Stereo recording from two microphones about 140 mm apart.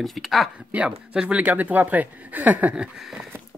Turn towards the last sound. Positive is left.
turn(degrees=0)  # may be behind; listen again after turning